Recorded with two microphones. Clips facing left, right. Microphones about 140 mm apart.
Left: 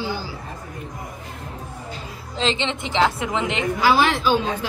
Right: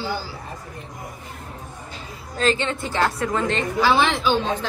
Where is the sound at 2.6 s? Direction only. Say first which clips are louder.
Left 2 dB; 20° left (ahead or behind).